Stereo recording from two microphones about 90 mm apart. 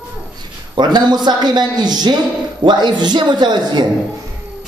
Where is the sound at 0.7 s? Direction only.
55° right (ahead or behind).